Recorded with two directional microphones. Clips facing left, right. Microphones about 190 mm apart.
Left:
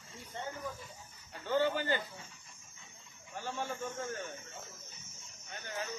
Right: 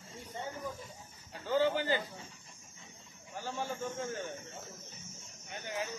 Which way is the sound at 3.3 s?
10° right (ahead or behind).